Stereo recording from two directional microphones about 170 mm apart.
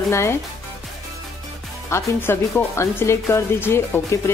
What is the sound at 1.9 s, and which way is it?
A woman's voice, 15° left (ahead or behind).